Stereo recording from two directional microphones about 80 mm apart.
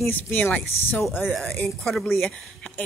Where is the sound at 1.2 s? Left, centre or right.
Centre.